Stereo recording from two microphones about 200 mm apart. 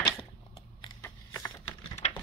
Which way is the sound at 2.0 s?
30° left (ahead or behind).